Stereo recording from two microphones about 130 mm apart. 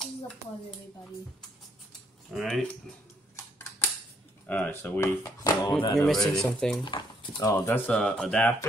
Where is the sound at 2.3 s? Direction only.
5° left (ahead or behind).